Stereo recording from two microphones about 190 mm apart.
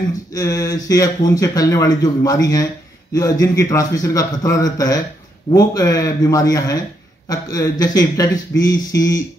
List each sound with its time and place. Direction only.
0.3 s a man's voice: 20° left (ahead or behind)